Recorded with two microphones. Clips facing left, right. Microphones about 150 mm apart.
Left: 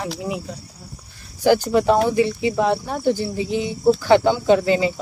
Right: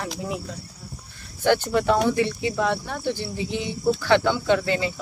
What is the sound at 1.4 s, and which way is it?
Speech, 10° left (ahead or behind).